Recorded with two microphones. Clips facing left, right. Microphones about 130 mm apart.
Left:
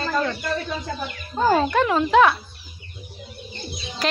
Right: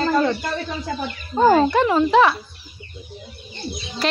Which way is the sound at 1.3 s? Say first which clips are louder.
Right 5 dB; 15° right (ahead or behind).